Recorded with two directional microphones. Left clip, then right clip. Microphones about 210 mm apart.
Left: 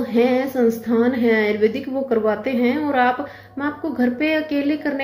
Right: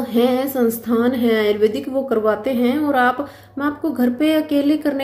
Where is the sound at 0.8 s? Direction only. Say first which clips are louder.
Even; 20° right (ahead or behind).